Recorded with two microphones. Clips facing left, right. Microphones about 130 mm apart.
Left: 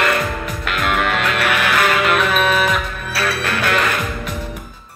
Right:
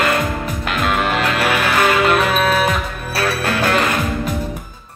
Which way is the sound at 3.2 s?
35° right (ahead or behind).